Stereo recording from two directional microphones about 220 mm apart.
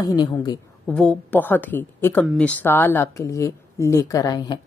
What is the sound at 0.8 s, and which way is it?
A woman's voice, 5° left (ahead or behind).